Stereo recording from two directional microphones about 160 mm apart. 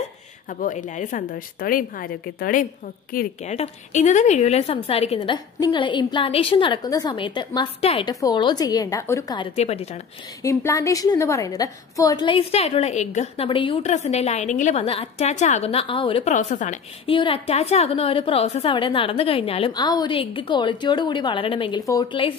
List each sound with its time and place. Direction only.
0.5 s a woman's voice: 55° left (ahead or behind)
3.5 s a woman's voice: 45° left (ahead or behind); by 9.4 s 20° left (ahead or behind)
9.4 s a woman's voice: 40° left (ahead or behind)
10.4 s a woman's voice: 20° left (ahead or behind)
13.8 s a woman's voice: 45° left (ahead or behind)
16.3 s a woman's voice: 50° left (ahead or behind)
17.1 s a woman's voice: 35° left (ahead or behind)